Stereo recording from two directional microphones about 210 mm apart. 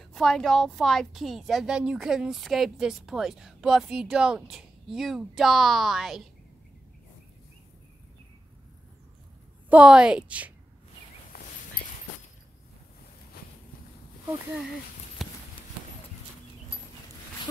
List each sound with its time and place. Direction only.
0.0 s a woman's voice: centre (ahead or behind)
9.7 s a woman's voice: 5° right (ahead or behind)
11.3 s a sound: 40° left (ahead or behind)
15.2 s clip-clop: centre (ahead or behind)